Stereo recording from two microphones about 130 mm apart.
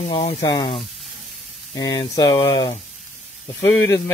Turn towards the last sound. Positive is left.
turn(degrees=25)  # may be behind; listen again after turning